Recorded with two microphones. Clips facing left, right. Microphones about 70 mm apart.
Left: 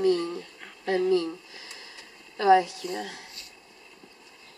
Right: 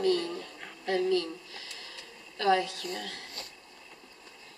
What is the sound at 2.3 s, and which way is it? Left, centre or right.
Speech, left.